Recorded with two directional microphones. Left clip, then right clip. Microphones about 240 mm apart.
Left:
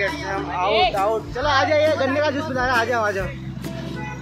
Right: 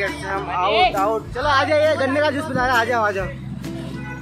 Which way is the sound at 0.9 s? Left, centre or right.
Centre.